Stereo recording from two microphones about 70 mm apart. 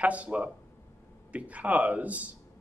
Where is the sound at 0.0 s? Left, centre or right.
Centre.